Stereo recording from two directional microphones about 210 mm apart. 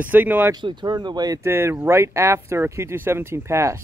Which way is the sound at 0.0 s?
10° right (ahead or behind).